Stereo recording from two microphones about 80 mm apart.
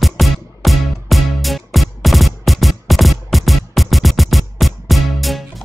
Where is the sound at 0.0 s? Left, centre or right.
Centre.